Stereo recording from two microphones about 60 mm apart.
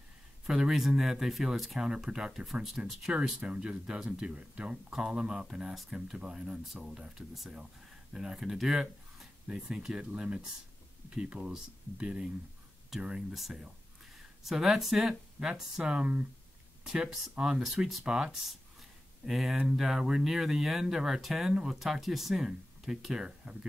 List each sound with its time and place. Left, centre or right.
0.5 s speech: centre
3.3 s speech: centre
13.0 s speech: centre
18.0 s speech: centre